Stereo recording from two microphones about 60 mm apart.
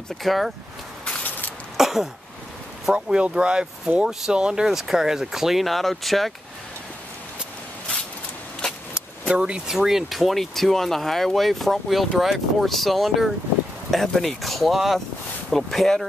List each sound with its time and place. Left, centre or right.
0.2 s speech: centre
1.8 s a sound: centre
2.9 s speech: centre
9.3 s speech: centre